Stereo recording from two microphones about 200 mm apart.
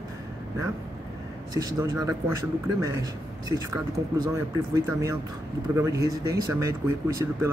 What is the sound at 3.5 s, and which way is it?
Speech, 20° right (ahead or behind).